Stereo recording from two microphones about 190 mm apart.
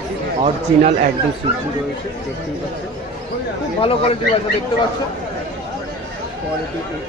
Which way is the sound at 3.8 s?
30° left (ahead or behind).